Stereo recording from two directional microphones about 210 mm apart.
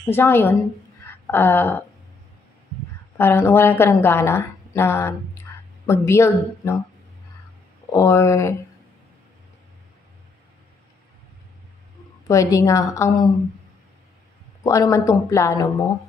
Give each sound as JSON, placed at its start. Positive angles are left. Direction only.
{"t": 0.0, "sound": "speech", "side_deg": 10}
{"t": 3.2, "sound": "a woman's voice", "side_deg": 10}
{"t": 7.9, "sound": "speech", "side_deg": 15}
{"t": 12.3, "sound": "speech", "side_deg": 15}
{"t": 14.6, "sound": "speech", "side_deg": 15}